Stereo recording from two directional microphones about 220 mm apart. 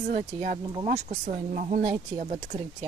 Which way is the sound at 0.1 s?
35° right (ahead or behind).